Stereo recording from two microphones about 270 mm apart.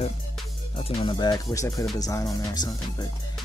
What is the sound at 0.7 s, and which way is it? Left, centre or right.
Speech, centre.